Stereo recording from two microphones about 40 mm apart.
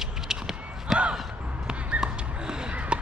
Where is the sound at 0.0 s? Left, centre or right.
Centre.